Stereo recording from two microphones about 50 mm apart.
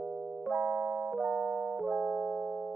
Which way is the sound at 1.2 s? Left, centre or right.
Right.